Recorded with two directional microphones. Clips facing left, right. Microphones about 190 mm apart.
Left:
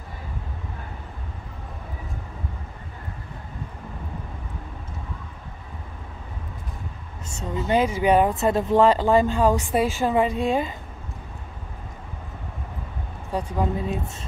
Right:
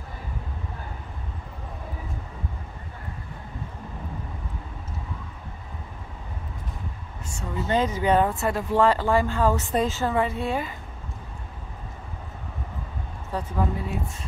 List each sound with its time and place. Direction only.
7.2 s speech: 20° left (ahead or behind)
13.3 s speech: 15° left (ahead or behind)